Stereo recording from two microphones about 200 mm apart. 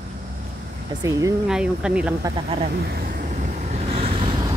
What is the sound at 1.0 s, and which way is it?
Speech, 15° right (ahead or behind).